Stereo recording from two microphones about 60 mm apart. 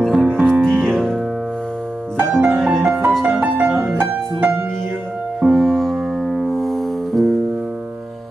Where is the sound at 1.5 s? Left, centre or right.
Centre.